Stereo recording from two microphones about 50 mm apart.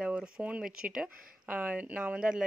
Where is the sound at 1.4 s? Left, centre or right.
Right.